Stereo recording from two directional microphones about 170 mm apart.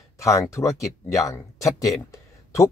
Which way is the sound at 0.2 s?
20° left (ahead or behind).